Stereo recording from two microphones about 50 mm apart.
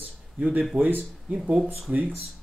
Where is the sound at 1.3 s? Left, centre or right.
Centre.